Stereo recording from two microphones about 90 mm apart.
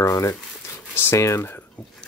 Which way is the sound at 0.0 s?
40° left (ahead or behind).